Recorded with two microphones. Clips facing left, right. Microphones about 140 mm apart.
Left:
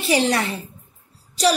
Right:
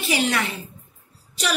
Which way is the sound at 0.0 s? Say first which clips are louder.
Left 4 dB; 35° left (ahead or behind).